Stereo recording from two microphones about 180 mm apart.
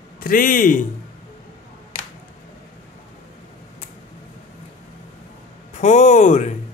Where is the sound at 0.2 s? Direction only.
50° left (ahead or behind).